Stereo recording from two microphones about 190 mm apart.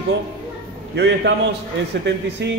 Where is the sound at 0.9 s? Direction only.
60° right (ahead or behind).